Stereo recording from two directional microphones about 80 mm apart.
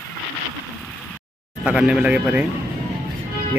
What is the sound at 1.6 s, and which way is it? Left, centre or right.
Speech, centre.